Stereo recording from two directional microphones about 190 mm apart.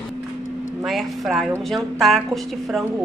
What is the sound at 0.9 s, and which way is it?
A woman's voice, centre (ahead or behind).